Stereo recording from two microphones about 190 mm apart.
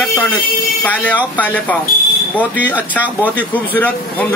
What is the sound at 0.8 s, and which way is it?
Speech, 5° left (ahead or behind).